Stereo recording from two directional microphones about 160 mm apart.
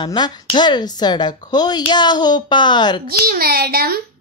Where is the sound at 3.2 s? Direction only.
70° right (ahead or behind).